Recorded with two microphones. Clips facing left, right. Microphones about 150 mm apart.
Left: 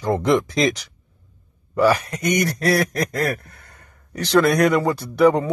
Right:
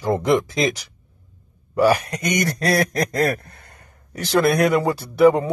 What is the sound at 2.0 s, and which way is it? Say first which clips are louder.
Speech: right 1 dB; 35° right (ahead or behind).